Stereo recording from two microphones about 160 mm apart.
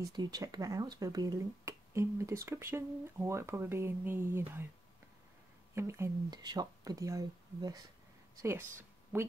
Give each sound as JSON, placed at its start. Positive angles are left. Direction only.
{"t": 0.0, "sound": "speech", "side_deg": -25}
{"t": 5.8, "sound": "a woman's voice", "side_deg": -15}